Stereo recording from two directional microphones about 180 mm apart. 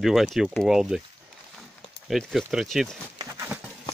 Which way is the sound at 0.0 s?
Centre (ahead or behind).